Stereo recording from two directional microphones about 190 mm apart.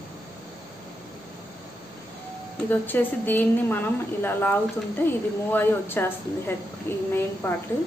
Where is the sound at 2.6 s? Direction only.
10° left (ahead or behind).